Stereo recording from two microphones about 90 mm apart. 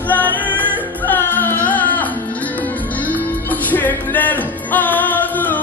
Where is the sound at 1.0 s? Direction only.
20° left (ahead or behind).